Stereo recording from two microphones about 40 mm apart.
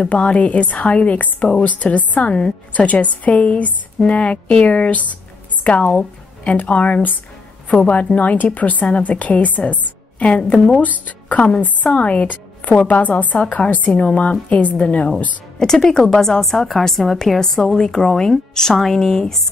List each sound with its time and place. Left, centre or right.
0.0 s a woman's voice: left
10.8 s a woman's voice: left
15.6 s a woman's voice: centre